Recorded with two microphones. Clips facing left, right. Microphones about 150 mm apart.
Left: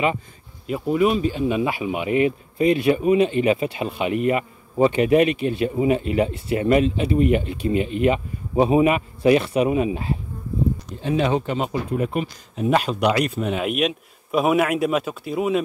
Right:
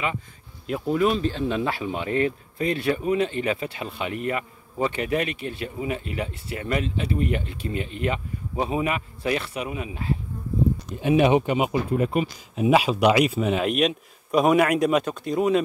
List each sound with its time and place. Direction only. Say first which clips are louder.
0.7 s speech: left 3 dB; 5° left (ahead or behind); by 10.1 s 20° left (ahead or behind)
11.0 s speech: right 3 dB; 15° right (ahead or behind); by 15.6 s 5° left (ahead or behind)